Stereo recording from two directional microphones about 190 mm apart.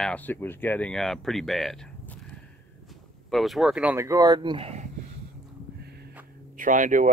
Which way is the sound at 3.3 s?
Centre (ahead or behind).